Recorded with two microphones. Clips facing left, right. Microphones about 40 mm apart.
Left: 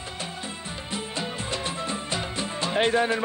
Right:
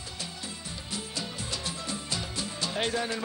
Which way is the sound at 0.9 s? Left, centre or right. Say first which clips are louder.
Left 5 dB; left.